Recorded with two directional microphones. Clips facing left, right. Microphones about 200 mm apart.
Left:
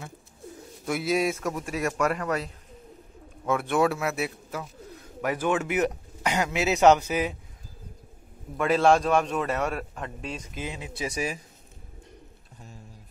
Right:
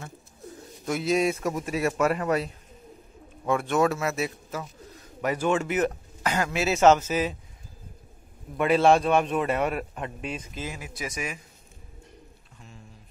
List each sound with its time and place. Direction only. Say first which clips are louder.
0.8 s a man's voice: right 1 dB; 5° left (ahead or behind)
1.7 s a man's voice: right 2 dB; 15° right (ahead or behind)
3.4 s a man's voice: even; 5° left (ahead or behind)
8.5 s a man's voice: right 1 dB; 5° right (ahead or behind)
10.5 s a man's voice: left 1 dB; 20° left (ahead or behind)
11.0 s speech: left 4 dB; 30° left (ahead or behind)